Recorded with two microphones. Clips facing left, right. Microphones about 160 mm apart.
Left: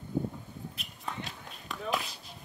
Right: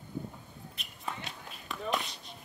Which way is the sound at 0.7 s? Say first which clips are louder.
Right 1 dB; centre (ahead or behind).